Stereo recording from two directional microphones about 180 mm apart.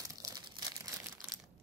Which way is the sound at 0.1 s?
20° right (ahead or behind).